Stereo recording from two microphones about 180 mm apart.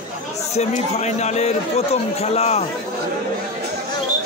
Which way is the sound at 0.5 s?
40° left (ahead or behind).